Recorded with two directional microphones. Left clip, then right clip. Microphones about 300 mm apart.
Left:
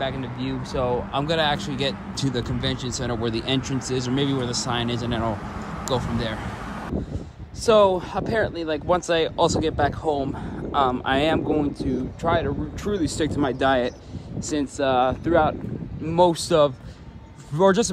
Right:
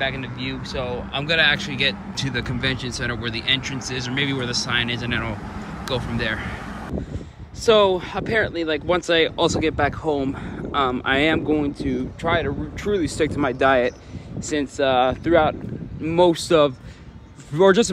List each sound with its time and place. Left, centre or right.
0.0 s speech: centre
7.6 s speech: centre